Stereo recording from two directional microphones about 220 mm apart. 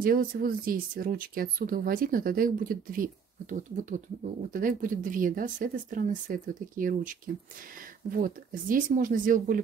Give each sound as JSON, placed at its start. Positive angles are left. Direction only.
{"t": 0.0, "sound": "speech", "side_deg": -40}